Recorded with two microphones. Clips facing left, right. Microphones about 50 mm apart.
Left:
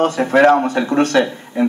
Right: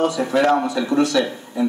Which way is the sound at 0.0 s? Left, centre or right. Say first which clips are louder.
Left 5 dB; left.